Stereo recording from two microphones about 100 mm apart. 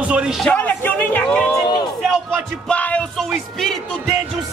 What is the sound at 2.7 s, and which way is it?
Music, 15° left (ahead or behind).